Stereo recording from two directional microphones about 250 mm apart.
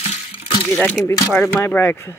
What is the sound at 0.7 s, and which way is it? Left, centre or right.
Speech, centre.